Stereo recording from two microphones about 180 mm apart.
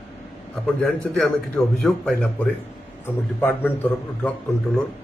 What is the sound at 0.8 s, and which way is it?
A man's voice, 5° left (ahead or behind).